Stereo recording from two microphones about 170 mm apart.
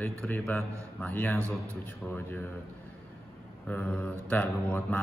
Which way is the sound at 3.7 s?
10° left (ahead or behind).